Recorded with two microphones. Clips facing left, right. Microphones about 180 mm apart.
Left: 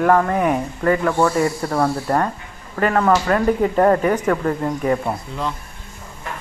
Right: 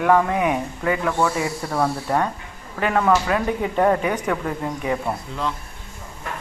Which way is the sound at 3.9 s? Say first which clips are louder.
Left 3 dB; 45° left (ahead or behind).